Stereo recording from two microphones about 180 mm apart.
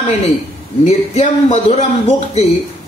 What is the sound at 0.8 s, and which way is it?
Speech, 40° left (ahead or behind).